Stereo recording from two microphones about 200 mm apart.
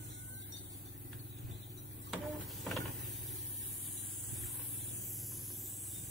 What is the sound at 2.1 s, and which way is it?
Power windows, centre (ahead or behind).